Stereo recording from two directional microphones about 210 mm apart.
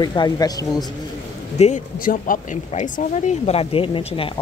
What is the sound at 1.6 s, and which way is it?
Speech, 40° left (ahead or behind).